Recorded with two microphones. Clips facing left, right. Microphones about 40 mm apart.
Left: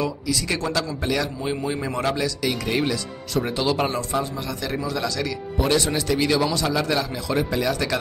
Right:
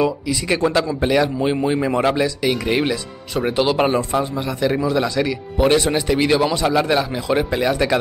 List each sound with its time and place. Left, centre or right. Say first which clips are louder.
0.0 s speech: right 5 dB; right